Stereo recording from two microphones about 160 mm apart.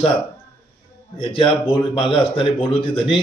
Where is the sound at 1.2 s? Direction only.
35° left (ahead or behind).